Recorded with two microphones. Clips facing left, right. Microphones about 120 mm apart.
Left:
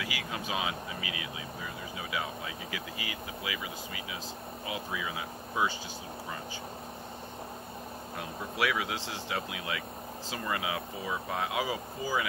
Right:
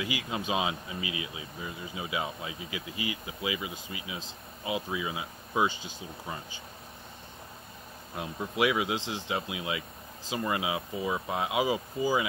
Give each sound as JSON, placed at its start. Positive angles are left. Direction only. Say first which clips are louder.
{"t": 0.0, "sound": "speech", "louder": "right 4 dB", "side_deg": -25}
{"t": 8.2, "sound": "speech", "louder": "right 4 dB", "side_deg": -20}